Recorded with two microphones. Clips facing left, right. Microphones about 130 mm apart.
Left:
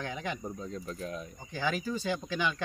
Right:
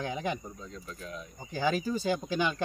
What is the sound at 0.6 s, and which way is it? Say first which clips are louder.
Speech: left 5 dB; 35° left (ahead or behind).